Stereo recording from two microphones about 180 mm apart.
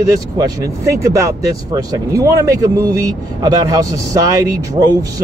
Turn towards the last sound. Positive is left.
turn(degrees=-20)  # may be behind; listen again after turning